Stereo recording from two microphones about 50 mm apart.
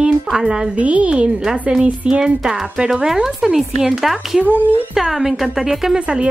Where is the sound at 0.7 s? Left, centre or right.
Right; by 6.0 s centre.